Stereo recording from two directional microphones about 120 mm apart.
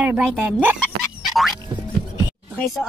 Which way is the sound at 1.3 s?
Centre (ahead or behind).